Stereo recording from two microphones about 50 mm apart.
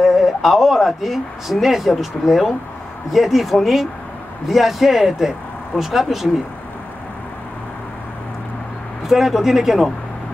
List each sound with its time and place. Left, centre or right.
0.0 s speech: centre
9.0 s speech: centre